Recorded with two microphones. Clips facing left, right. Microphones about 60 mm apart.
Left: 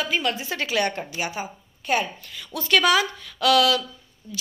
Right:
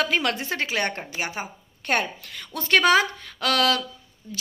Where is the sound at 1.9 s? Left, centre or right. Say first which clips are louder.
Left 1 dB; right.